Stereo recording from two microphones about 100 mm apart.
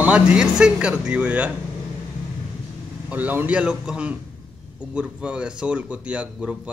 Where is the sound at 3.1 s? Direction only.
15° right (ahead or behind).